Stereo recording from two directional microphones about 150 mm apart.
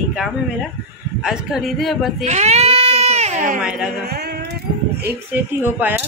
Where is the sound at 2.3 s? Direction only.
45° right (ahead or behind).